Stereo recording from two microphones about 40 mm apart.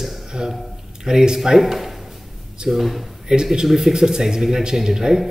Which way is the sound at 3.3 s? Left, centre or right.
Centre.